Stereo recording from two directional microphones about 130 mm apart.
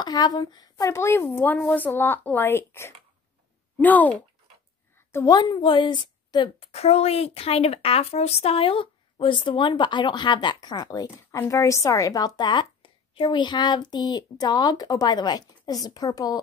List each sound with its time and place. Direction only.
0.0 s a woman's voice: 35° left (ahead or behind); by 4.2 s 15° left (ahead or behind)
5.1 s a woman's voice: 25° left (ahead or behind)